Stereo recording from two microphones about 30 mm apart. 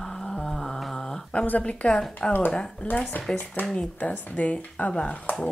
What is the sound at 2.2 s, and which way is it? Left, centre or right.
Speech, left.